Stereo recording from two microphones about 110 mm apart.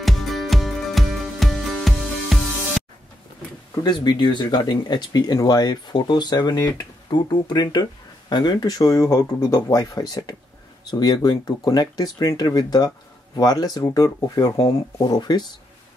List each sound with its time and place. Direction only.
0.0 s music: centre (ahead or behind)
3.8 s speech: 40° left (ahead or behind)